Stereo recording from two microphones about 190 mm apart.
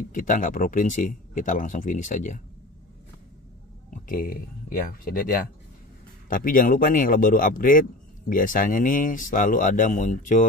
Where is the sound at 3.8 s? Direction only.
45° left (ahead or behind).